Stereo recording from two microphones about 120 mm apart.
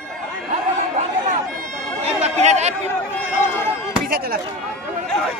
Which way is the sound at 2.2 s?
70° right (ahead or behind).